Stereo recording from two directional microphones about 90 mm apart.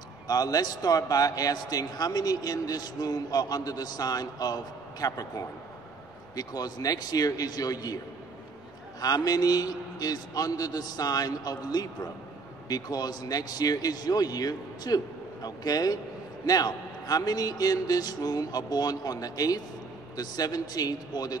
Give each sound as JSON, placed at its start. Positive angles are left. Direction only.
{"t": 0.3, "sound": "a man's voice", "side_deg": 45}
{"t": 9.0, "sound": "a man's voice", "side_deg": 45}